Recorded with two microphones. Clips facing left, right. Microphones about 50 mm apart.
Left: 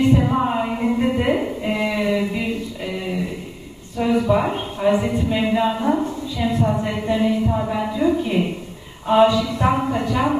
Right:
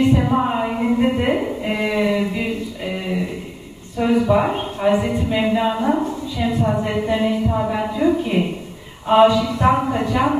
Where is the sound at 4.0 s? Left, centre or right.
Centre.